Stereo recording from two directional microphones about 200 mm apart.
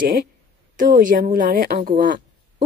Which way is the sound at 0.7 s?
45° right (ahead or behind).